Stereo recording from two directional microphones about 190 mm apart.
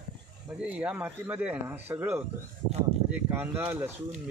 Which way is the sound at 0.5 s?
5° right (ahead or behind).